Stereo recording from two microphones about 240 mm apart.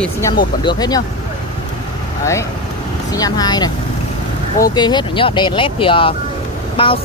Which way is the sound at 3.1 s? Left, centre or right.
Centre.